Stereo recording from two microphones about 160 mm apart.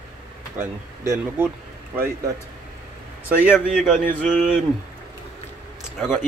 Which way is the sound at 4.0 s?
55° right (ahead or behind).